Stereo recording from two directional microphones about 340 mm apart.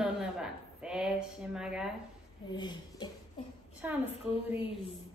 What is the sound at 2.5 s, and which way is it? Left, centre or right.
Speech, centre.